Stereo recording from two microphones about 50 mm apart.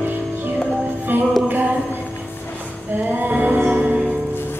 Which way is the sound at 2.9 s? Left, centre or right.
Right.